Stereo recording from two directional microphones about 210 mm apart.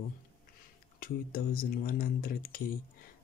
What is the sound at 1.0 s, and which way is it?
Speech, 45° left (ahead or behind).